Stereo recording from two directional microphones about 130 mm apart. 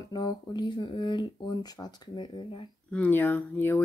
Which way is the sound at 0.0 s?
30° left (ahead or behind).